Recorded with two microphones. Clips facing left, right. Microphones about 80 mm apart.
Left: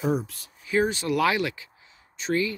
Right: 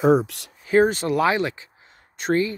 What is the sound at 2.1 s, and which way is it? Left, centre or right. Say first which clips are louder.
Speech: right 5 dB; right.